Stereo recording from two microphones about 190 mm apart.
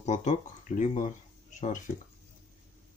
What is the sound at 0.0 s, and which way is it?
Speech, 40° left (ahead or behind).